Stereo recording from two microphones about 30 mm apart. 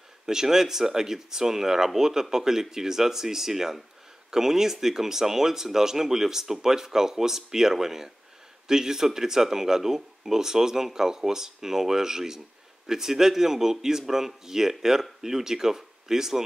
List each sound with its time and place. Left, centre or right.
0.3 s speech: centre